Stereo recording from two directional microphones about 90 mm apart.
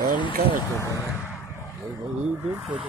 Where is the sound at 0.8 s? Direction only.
30° left (ahead or behind).